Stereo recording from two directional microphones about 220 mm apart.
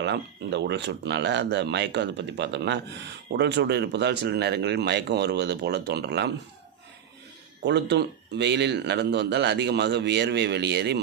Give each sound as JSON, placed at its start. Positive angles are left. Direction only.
{"t": 0.0, "sound": "speech", "side_deg": -50}
{"t": 7.6, "sound": "speech", "side_deg": -50}